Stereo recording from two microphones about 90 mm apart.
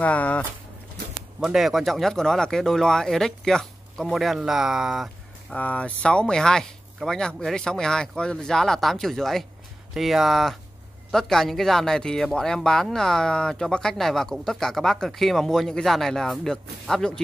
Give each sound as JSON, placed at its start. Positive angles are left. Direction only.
{"t": 0.0, "sound": "speech", "side_deg": 15}
{"t": 1.4, "sound": "speech", "side_deg": -5}
{"t": 5.5, "sound": "speech", "side_deg": 15}